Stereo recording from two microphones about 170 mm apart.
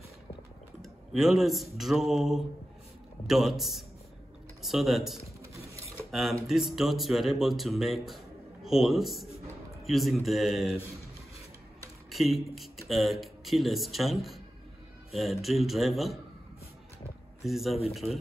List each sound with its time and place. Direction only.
1.1 s speech: centre (ahead or behind)
5.8 s a sound: 15° right (ahead or behind)
6.4 s speech: centre (ahead or behind)
12.8 s speech: centre (ahead or behind)
17.4 s speech: centre (ahead or behind)
18.0 s a man's voice: 15° right (ahead or behind)